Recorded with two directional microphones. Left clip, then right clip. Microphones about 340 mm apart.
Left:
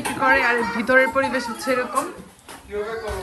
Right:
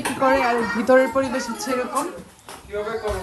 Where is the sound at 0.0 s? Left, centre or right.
Centre.